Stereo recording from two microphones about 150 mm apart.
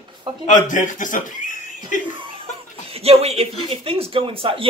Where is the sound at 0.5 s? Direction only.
60° left (ahead or behind).